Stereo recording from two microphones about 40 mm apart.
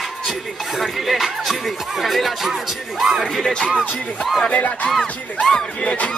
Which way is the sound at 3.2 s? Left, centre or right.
Centre.